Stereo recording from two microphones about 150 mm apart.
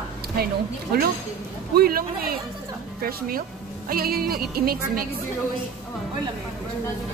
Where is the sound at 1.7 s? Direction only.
80° right.